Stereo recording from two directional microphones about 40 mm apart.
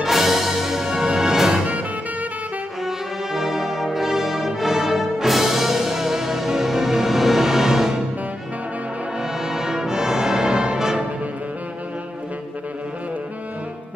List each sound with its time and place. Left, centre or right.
0.0 s music: centre
1.6 s music: right
3.3 s brass instrument: centre
9.2 s brass instrument: centre